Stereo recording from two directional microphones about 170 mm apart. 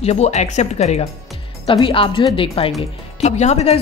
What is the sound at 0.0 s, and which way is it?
Speech, 40° left (ahead or behind).